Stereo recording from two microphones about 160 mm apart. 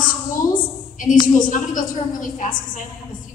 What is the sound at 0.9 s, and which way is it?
A woman's voice, 55° left (ahead or behind).